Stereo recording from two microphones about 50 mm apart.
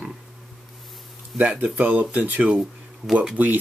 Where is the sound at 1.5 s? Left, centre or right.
Right.